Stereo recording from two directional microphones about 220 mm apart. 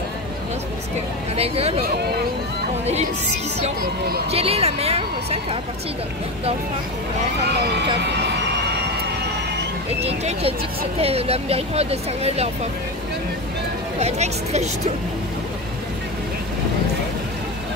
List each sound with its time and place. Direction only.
1.3 s speech: 25° right (ahead or behind)
4.3 s speech: 25° right (ahead or behind)
7.6 s speech: 50° right (ahead or behind)
10.0 s speech: 25° right (ahead or behind)
13.9 s speech: 30° right (ahead or behind)